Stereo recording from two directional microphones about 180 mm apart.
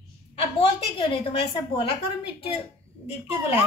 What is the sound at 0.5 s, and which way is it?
A woman's voice, 30° left (ahead or behind).